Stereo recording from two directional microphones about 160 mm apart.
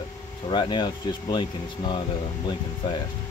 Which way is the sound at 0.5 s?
30° left (ahead or behind).